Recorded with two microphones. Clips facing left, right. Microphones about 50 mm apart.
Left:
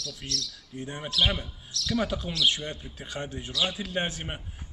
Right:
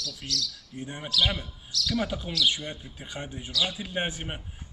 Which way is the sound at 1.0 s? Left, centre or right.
Left.